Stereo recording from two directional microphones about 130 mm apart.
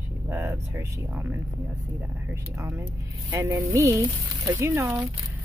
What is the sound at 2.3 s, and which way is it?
Speech, 20° right (ahead or behind).